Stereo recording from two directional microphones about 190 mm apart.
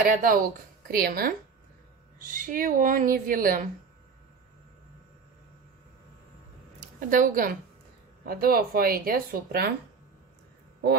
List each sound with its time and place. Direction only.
0.0 s speech: 45° right (ahead or behind)
6.8 s a woman's voice: 45° right (ahead or behind)